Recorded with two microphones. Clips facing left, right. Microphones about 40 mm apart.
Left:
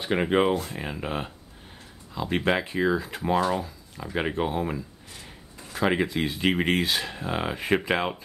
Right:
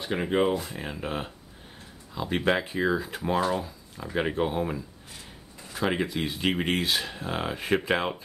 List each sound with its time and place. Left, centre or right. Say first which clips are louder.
0.0 s speech: left 3 dB; left
0.7 s speech: left 2 dB; centre
6.5 s speech: left 3 dB; left
6.8 s speech: left 1 dB; centre